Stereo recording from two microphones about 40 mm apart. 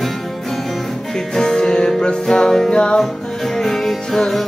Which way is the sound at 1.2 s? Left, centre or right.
Centre.